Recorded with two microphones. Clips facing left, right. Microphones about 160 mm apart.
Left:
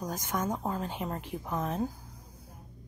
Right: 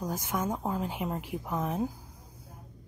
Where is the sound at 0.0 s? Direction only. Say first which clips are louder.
Right 1 dB; 10° right (ahead or behind).